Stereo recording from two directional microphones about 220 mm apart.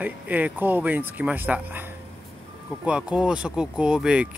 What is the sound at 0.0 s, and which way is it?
Speech, 10° right (ahead or behind).